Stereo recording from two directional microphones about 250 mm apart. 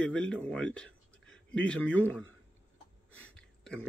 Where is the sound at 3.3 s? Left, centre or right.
Centre.